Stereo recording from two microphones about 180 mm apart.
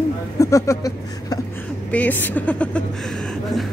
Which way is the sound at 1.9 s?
10° left (ahead or behind).